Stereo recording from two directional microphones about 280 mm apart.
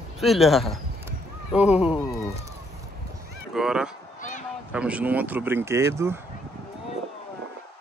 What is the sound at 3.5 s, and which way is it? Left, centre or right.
Speech, centre.